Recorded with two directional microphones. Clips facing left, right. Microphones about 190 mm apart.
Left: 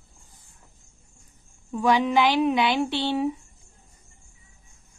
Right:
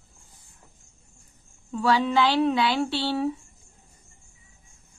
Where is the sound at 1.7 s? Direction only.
15° left (ahead or behind).